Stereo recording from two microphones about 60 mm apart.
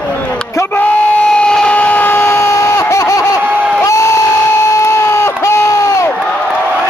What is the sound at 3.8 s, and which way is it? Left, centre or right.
Crowd, left.